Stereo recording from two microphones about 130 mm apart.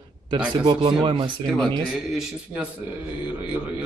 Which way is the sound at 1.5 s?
Centre (ahead or behind).